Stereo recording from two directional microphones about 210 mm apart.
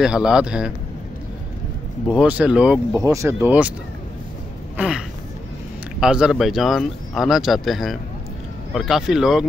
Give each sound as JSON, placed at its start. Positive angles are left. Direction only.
{"t": 0.0, "sound": "speech", "side_deg": -5}
{"t": 2.0, "sound": "speech", "side_deg": -5}
{"t": 4.7, "sound": "speech", "side_deg": -5}